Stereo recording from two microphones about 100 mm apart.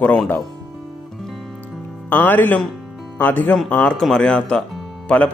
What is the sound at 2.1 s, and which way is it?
Speech, 20° left (ahead or behind).